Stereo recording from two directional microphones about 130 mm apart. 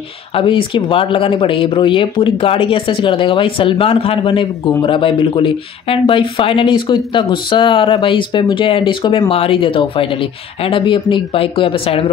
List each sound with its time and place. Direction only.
0.4 s speech: 40° left (ahead or behind)